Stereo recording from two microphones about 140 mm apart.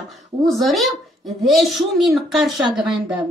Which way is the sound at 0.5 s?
Centre (ahead or behind).